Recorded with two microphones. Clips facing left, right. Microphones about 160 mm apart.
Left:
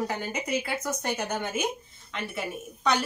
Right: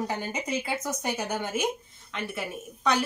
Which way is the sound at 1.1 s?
5° right (ahead or behind).